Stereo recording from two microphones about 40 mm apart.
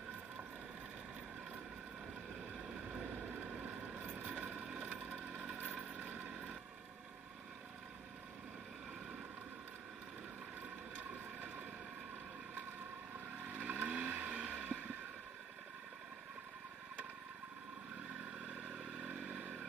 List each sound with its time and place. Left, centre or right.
3.0 s a sound: right
3.5 s vehicle: right
4.0 s vehicle: right
4.5 s a sound: centre
4.8 s vehicle: right
13.4 s vehicle: right
18.7 s motorcycle: right